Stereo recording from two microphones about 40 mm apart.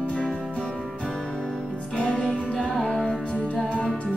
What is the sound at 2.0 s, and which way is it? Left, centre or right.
Music, left.